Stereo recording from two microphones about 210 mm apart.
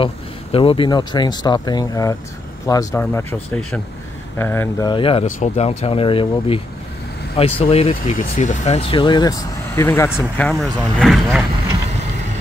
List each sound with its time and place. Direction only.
0.0 s speech: 25° left (ahead or behind)
8.0 s speech: 40° left (ahead or behind); by 11.4 s centre (ahead or behind)